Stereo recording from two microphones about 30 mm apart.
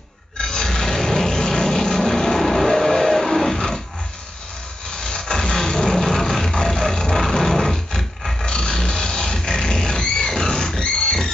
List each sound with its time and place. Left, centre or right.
0.4 s rub: left
5.0 s music: left; by 8.5 s centre
8.5 s music: left
9.9 s a sound: left
10.8 s music: left